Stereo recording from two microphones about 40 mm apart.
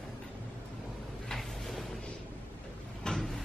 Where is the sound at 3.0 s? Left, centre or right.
Left.